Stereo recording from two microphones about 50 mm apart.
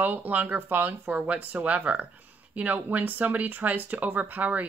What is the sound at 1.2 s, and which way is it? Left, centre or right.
Speech, right.